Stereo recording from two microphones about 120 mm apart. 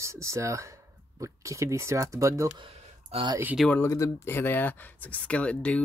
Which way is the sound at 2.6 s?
50° right (ahead or behind).